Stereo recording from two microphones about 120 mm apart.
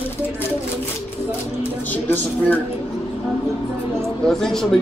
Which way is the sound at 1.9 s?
15° left (ahead or behind).